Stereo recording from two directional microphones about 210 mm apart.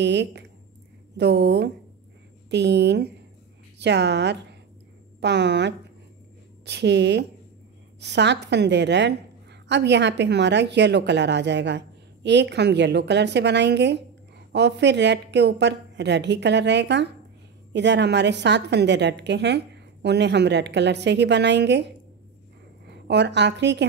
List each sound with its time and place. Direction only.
0.0 s a woman's voice: 55° right (ahead or behind)